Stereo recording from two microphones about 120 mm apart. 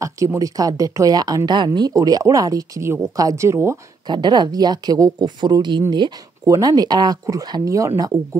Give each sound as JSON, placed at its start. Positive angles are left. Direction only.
{"t": 0.0, "sound": "speech", "side_deg": -25}
{"t": 4.1, "sound": "speech", "side_deg": -35}